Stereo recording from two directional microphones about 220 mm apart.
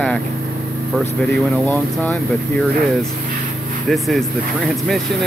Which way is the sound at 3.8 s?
Centre (ahead or behind).